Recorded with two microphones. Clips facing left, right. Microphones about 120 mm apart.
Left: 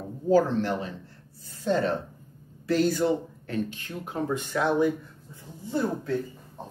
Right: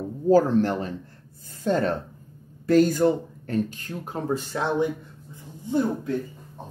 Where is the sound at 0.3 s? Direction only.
40° right (ahead or behind); by 5.8 s 20° right (ahead or behind).